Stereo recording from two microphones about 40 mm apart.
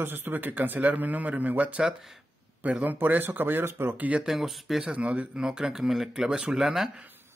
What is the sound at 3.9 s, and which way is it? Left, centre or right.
Speech, right.